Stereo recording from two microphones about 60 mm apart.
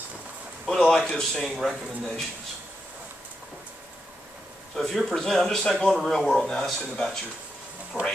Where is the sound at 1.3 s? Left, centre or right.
Centre.